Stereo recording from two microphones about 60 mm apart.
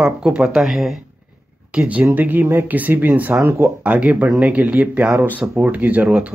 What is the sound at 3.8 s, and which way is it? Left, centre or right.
Speech, right.